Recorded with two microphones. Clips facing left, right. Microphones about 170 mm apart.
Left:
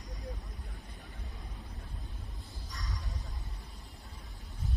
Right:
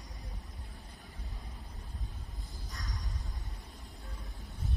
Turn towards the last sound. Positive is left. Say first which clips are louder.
# left 1 dB
turn(degrees=-40)  # may be behind; listen again after turning